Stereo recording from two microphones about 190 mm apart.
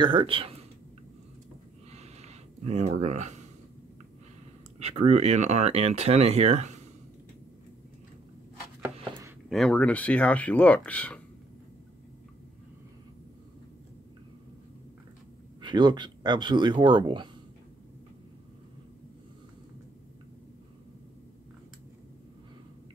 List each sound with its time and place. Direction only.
0.0 s speech: 25° right (ahead or behind)
1.9 s a sound: 35° right (ahead or behind)
4.7 s speech: 35° right (ahead or behind)
9.5 s speech: 5° left (ahead or behind)
15.6 s speech: 25° right (ahead or behind)